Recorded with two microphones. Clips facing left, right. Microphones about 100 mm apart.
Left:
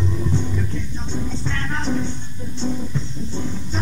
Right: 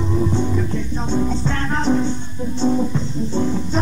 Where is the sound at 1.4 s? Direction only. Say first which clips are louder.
Right 6 dB; 35° right (ahead or behind).